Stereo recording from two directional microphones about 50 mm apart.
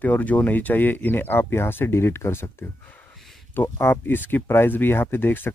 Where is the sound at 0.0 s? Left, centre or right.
Left.